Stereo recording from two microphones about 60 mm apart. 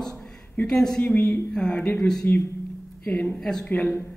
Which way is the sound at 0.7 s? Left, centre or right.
Centre.